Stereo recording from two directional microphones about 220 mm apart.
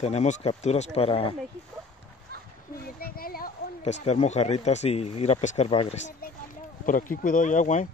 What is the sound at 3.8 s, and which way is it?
Speech, 30° left (ahead or behind).